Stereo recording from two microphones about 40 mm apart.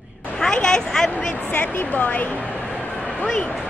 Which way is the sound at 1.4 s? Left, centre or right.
Left.